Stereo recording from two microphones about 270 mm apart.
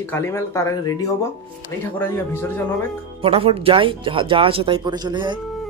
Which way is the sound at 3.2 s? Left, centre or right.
Right.